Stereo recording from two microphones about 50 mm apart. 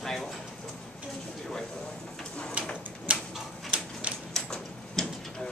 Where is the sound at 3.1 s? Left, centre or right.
Right.